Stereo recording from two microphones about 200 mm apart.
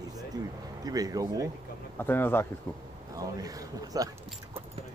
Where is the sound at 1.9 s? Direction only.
10° left (ahead or behind).